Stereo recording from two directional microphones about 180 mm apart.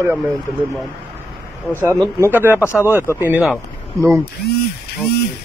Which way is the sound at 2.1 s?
15° right (ahead or behind).